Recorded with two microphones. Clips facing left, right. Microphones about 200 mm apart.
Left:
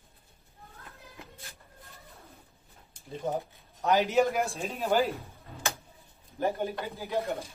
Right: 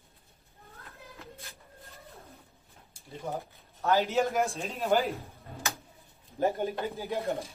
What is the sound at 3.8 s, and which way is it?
Speech, 15° left (ahead or behind).